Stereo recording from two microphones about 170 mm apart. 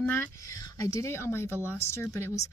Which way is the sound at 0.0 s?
10° left (ahead or behind).